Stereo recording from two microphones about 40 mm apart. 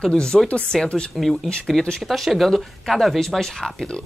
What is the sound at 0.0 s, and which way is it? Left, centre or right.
Speech, left.